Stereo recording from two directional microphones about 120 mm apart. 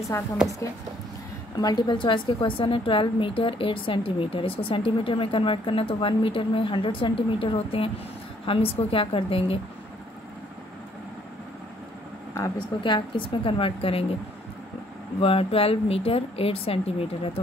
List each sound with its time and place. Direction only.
0.1 s a woman's voice: 25° left (ahead or behind)
1.6 s a woman's voice: 35° left (ahead or behind); by 9.6 s 50° left (ahead or behind)
12.4 s a woman's voice: 25° left (ahead or behind)
12.8 s a woman's voice: 40° left (ahead or behind)
15.1 s a woman's voice: 55° left (ahead or behind)